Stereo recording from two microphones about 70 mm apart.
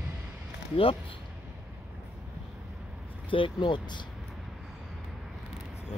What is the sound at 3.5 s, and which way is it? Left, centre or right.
Speech, left.